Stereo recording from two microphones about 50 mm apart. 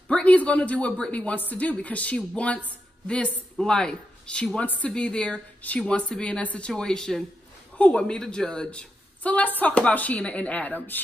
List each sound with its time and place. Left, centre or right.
0.1 s a sound: left
1.1 s a man's voice: left
4.6 s speech: left
4.9 s a man's voice: left
6.7 s speech: centre
7.7 s a man's voice: left
8.0 s a man's voice: centre; by 11.0 s left